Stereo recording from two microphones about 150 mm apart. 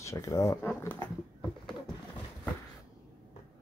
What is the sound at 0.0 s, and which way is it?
Speech, 20° left (ahead or behind).